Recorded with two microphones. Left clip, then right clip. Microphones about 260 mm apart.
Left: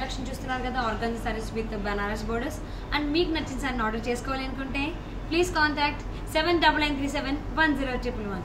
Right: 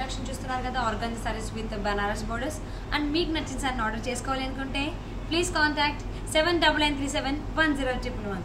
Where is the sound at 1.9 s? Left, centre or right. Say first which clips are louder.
Right 3 dB; centre.